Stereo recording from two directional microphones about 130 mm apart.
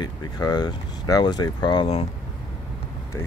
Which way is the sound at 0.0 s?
30° left (ahead or behind).